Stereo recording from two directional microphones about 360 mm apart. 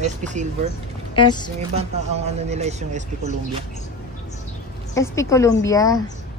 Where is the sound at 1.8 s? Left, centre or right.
Centre.